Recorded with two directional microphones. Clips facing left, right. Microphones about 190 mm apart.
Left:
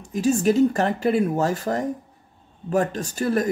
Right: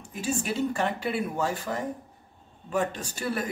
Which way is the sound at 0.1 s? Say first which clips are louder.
Left 11 dB; 40° left (ahead or behind).